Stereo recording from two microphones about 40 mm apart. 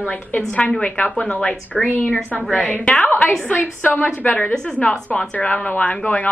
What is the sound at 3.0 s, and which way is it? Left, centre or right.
Speech, left.